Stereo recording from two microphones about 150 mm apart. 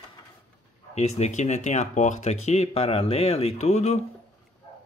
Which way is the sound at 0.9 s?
45° left (ahead or behind).